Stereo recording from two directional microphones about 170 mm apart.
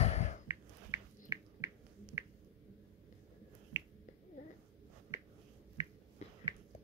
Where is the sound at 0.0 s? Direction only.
40° left (ahead or behind).